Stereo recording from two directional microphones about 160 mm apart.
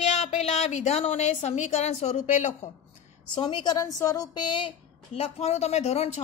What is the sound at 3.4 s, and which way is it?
A woman's voice, 30° left (ahead or behind).